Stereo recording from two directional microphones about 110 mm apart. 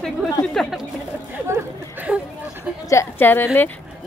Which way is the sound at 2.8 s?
20° left (ahead or behind).